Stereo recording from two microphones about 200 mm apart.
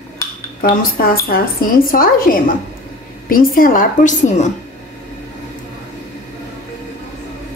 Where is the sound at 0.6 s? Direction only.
45° left (ahead or behind).